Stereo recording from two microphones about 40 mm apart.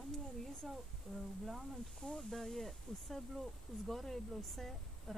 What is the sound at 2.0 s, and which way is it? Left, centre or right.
Speech, centre.